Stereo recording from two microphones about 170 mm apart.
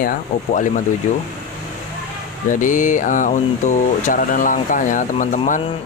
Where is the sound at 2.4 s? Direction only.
50° left (ahead or behind).